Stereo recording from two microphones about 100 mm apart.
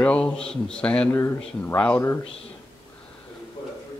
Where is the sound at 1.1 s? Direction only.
25° left (ahead or behind).